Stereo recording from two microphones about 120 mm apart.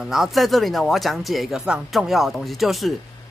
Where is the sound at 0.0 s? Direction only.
Centre (ahead or behind).